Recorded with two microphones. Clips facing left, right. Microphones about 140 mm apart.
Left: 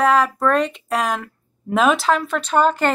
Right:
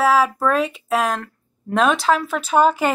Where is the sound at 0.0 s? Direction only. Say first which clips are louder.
Even; 5° right (ahead or behind).